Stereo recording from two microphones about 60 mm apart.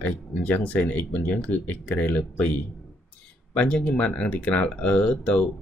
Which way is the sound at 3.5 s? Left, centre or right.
Centre.